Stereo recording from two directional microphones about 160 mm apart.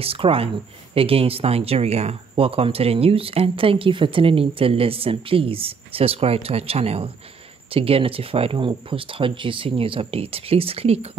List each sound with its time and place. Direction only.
0.0 s speech: 35° right (ahead or behind)